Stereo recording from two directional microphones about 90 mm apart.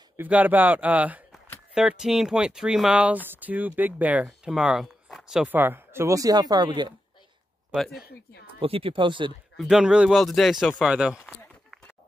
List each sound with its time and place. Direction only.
0.2 s speech: 20° right (ahead or behind)
5.5 s speech: 25° right (ahead or behind); by 6.7 s 45° right (ahead or behind)
7.7 s speech: 5° left (ahead or behind)
8.5 s speech: 90° right; by 9.3 s 65° right (ahead or behind)
9.6 s speech: 5° right (ahead or behind)
10.2 s speech: centre (ahead or behind)